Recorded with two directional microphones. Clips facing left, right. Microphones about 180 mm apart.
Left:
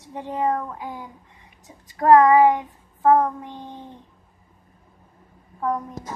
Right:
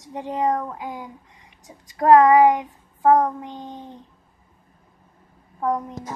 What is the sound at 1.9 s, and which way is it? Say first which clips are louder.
Child singing: right 1 dB; 20° right (ahead or behind).